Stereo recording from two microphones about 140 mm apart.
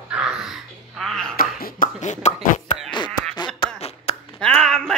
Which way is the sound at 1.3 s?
90° left.